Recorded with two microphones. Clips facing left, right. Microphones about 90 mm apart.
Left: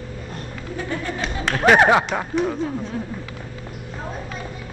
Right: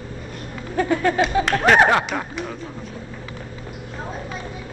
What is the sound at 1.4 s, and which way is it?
Speech, centre (ahead or behind).